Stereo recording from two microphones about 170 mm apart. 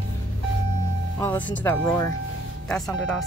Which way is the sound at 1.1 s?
10° left (ahead or behind).